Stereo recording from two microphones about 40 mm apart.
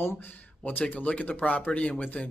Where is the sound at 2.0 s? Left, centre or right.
Left.